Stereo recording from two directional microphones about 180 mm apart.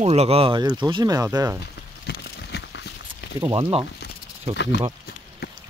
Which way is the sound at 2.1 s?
65° left (ahead or behind).